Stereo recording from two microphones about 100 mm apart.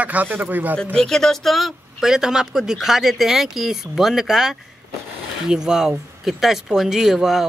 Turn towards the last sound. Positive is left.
turn(degrees=0)  # may be behind; listen again after turning